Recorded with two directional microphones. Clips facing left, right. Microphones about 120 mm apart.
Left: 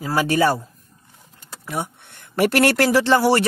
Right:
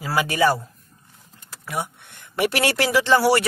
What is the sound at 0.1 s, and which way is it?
Speech, 35° left (ahead or behind).